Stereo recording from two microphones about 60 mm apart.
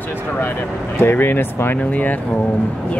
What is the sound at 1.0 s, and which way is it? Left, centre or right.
Speech, left.